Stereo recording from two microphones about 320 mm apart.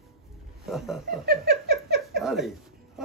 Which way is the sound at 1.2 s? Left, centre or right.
Right.